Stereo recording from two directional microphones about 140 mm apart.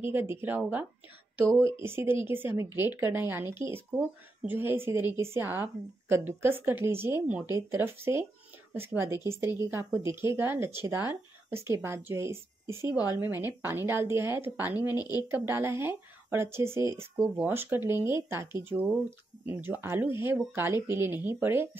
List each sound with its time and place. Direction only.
0.0 s speech: 15° right (ahead or behind)
15.0 s speech: 25° left (ahead or behind)
15.3 s speech: 15° right (ahead or behind)